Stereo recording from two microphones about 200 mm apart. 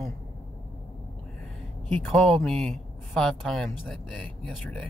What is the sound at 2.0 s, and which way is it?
Speech, 5° left (ahead or behind).